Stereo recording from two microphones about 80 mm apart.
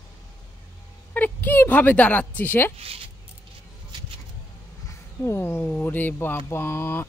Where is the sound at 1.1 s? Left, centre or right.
Left.